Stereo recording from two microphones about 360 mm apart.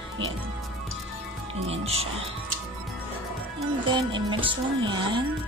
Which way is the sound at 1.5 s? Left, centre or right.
Centre.